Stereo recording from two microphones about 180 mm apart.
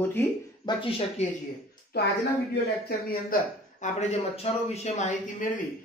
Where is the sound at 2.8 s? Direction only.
45° left (ahead or behind).